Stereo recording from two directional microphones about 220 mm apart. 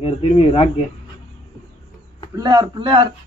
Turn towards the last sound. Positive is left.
turn(degrees=-20)  # may be behind; listen again after turning